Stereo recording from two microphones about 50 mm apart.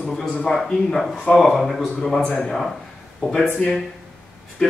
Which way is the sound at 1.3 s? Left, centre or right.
Centre.